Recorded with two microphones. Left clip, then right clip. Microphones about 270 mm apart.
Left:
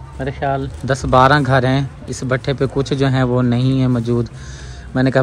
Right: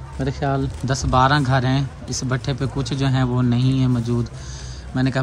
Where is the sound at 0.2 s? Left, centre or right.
Centre.